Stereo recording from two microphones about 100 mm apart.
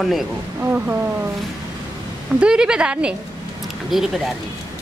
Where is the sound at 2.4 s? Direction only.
5° right (ahead or behind).